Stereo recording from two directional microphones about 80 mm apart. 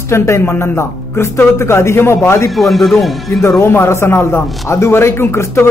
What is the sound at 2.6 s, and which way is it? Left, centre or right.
Speech, centre.